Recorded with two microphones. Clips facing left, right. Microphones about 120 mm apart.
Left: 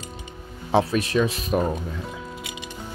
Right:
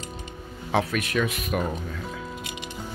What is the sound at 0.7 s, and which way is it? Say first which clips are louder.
Speech: left 4 dB; 30° left (ahead or behind).